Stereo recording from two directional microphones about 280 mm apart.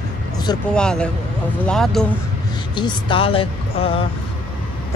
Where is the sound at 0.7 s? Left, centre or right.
Centre.